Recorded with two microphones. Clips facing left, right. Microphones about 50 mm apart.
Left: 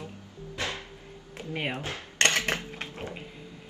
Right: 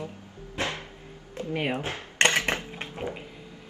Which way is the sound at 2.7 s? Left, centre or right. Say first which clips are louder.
Right 3 dB; centre.